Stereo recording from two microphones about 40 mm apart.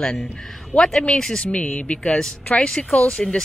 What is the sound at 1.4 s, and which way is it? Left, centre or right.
Speech, left.